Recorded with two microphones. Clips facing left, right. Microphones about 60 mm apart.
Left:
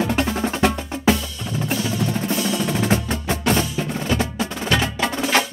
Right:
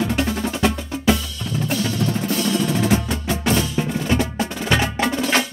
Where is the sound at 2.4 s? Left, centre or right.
Centre.